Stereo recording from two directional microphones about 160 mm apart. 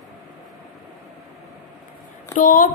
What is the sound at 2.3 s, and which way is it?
Speech, 55° left (ahead or behind).